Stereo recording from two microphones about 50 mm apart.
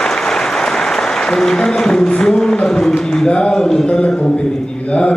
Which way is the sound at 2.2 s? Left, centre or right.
Centre.